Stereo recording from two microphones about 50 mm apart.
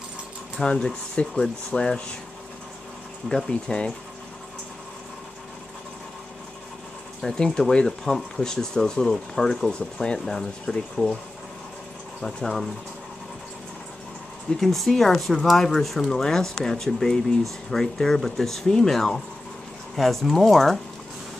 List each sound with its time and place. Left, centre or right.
0.7 s speech: left
3.3 s speech: centre
7.2 s speech: centre
12.2 s speech: centre
14.6 s speech: centre